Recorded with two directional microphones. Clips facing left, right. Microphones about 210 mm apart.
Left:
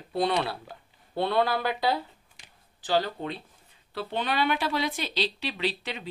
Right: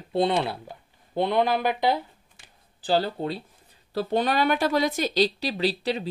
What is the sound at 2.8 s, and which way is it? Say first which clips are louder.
A woman's voice: right 3 dB; 30° right (ahead or behind).